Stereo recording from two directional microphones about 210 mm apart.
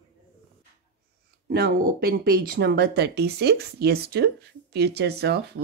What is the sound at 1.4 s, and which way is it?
Speech, 50° right (ahead or behind).